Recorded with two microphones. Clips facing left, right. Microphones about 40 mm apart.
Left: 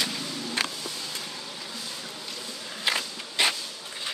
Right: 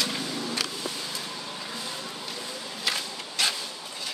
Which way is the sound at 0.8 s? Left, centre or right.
Centre.